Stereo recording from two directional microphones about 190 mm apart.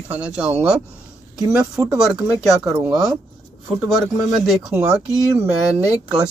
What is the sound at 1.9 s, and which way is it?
Speech, 5° right (ahead or behind).